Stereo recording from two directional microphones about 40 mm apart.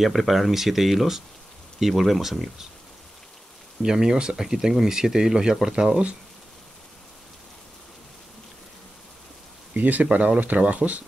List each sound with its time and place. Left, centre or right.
0.0 s speech: centre
3.8 s speech: centre
9.8 s speech: right